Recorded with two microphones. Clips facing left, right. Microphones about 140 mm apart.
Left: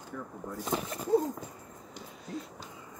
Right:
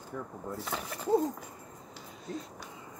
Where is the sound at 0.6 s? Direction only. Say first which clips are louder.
Left 7 dB; 15° left (ahead or behind).